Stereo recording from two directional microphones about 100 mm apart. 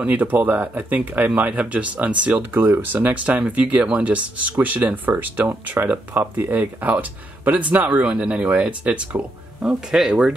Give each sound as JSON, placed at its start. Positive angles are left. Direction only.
{"t": 0.0, "sound": "speech", "side_deg": -15}